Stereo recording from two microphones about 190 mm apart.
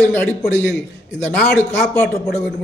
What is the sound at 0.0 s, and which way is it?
Speech, 5° left (ahead or behind).